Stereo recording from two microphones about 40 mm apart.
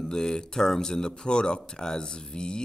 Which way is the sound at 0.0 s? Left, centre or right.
Centre.